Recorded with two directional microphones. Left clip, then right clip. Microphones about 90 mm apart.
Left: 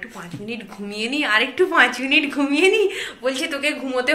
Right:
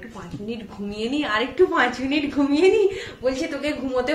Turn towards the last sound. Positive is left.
turn(degrees=-40)  # may be behind; listen again after turning